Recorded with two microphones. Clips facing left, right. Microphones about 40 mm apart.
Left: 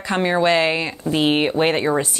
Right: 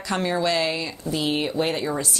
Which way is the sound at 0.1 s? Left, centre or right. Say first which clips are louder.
Left 6 dB; left.